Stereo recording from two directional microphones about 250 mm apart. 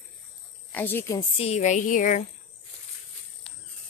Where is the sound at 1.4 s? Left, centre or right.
Left.